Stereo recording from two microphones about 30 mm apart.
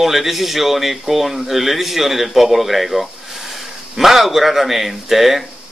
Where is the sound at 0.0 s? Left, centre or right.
Centre.